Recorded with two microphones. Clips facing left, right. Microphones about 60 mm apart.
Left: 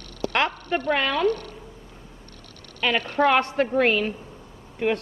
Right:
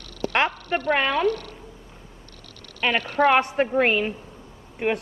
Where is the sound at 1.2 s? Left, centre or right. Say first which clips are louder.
Even; left.